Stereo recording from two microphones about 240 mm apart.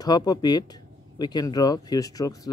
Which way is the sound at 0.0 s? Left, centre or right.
Centre.